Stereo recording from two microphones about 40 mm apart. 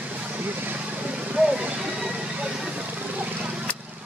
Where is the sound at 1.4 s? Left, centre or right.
Right.